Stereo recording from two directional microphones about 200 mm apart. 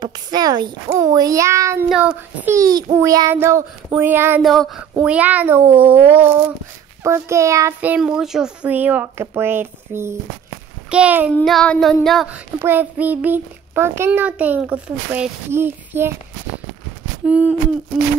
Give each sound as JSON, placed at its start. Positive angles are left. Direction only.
{"t": 0.0, "sound": "a child's voice", "side_deg": -20}
{"t": 4.4, "sound": "child singing", "side_deg": 0}
{"t": 5.0, "sound": "a child's voice", "side_deg": -5}
{"t": 10.9, "sound": "child singing", "side_deg": -5}
{"t": 11.3, "sound": "child singing", "side_deg": 5}
{"t": 12.5, "sound": "a child's voice", "side_deg": -10}
{"t": 17.3, "sound": "a child's voice", "side_deg": -5}